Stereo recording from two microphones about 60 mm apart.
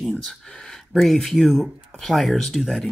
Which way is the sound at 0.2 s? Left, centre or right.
Centre.